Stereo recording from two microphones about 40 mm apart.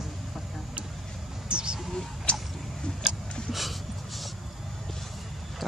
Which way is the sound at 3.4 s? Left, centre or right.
Centre.